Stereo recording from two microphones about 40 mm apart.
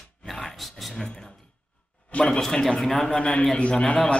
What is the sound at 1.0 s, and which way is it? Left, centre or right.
Speech, centre.